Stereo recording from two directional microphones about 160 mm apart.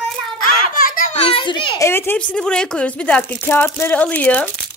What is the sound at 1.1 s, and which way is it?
A child's voice, 40° left (ahead or behind).